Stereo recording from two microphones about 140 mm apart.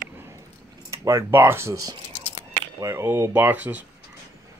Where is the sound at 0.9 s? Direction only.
20° right (ahead or behind).